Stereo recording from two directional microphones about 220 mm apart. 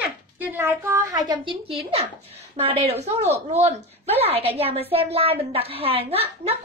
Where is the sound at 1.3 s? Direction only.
25° right (ahead or behind).